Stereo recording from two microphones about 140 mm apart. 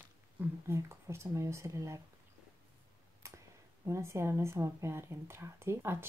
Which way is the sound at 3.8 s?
20° right (ahead or behind).